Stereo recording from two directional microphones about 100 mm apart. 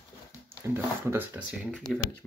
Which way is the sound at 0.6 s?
20° right (ahead or behind).